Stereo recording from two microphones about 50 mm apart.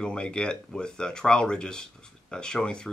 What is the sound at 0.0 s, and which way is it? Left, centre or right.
Speech, centre.